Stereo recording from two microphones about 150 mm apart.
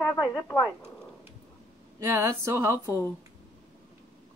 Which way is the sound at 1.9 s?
20° right (ahead or behind).